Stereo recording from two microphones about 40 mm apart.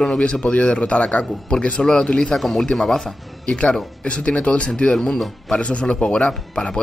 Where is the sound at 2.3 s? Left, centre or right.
Centre.